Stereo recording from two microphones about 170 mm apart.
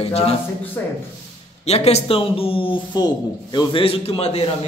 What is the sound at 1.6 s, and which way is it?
Speech, 40° left (ahead or behind).